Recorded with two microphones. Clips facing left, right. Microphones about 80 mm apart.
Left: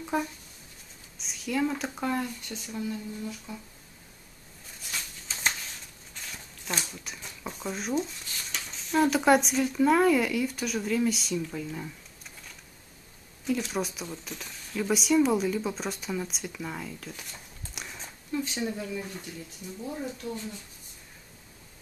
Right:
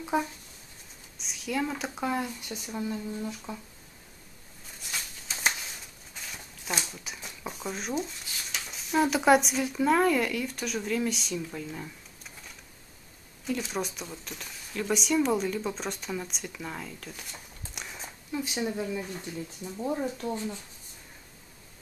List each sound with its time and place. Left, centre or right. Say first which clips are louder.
0.0 s speech: right 1 dB; centre
1.1 s speech: left 1 dB; centre
2.6 s speech: right 1 dB; right
6.3 s speech: right 1 dB; centre
13.5 s speech: left 2 dB; centre
20.2 s speech: right 3 dB; right